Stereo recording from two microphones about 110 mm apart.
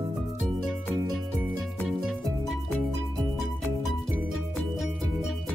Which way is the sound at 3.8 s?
Centre (ahead or behind).